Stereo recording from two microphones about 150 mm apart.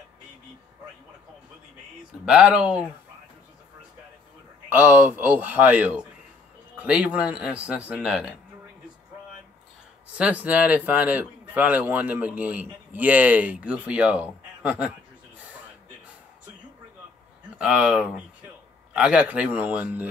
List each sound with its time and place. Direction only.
2.2 s a man's voice: 5° right (ahead or behind)
4.6 s a man's voice: 15° right (ahead or behind)
10.1 s a man's voice: 10° right (ahead or behind)
17.6 s a man's voice: 5° right (ahead or behind)